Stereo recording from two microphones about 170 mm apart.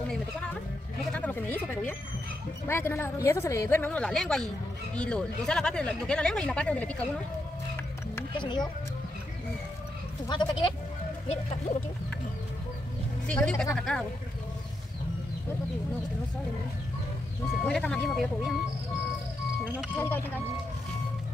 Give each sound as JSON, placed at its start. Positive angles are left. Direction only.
{"t": 1.1, "sound": "a sound", "side_deg": 10}
{"t": 2.7, "sound": "a woman's voice", "side_deg": 15}
{"t": 8.4, "sound": "speech", "side_deg": 25}
{"t": 10.2, "sound": "speech", "side_deg": 25}
{"t": 11.2, "sound": "speech", "side_deg": 40}
{"t": 13.3, "sound": "speech", "side_deg": 5}
{"t": 17.6, "sound": "speech", "side_deg": 5}